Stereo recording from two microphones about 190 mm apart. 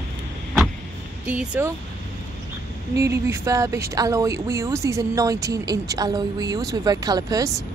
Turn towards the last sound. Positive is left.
turn(degrees=-20)  # may be behind; listen again after turning